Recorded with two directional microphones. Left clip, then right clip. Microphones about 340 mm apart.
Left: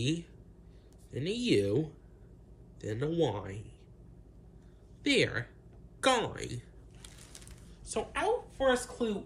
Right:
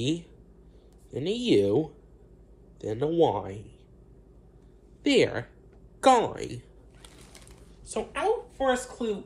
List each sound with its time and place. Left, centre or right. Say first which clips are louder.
0.0 s speech: right 5 dB; centre
5.0 s speech: right 5 dB; centre
5.9 s a sound: right 8 dB; centre
7.9 s a woman's voice: right 4 dB; centre